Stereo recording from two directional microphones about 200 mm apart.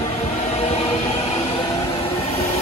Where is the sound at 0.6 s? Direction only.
30° left (ahead or behind).